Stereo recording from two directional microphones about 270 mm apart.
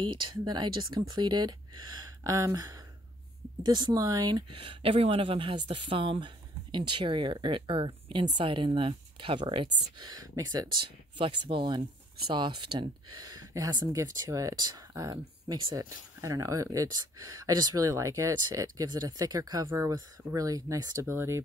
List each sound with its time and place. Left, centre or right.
0.0 s speech: centre